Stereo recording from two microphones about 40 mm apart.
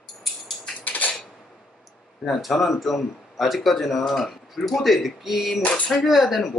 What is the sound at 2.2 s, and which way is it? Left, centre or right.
Speech, centre.